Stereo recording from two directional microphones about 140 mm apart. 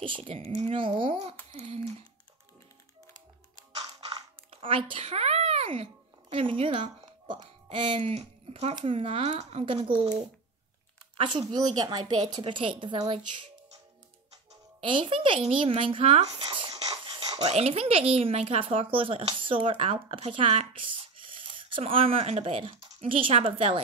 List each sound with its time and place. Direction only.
0.0 s speech: 40° right (ahead or behind)
4.5 s a child's voice: 40° right (ahead or behind)
11.1 s a woman's voice: 35° right (ahead or behind)
16.8 s a sound: 40° right (ahead or behind)
17.4 s speech: 50° right (ahead or behind)